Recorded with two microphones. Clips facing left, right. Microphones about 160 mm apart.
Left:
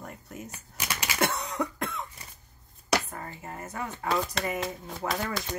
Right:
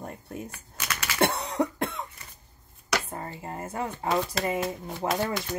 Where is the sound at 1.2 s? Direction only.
35° right (ahead or behind).